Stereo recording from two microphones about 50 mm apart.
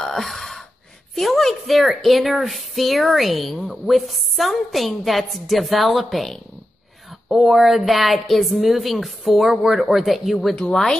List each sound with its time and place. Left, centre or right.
0.0 s gasp: centre
1.1 s a woman's voice: centre
10.5 s speech: left